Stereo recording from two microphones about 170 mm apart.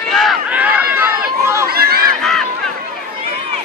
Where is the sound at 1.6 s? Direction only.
65° right (ahead or behind).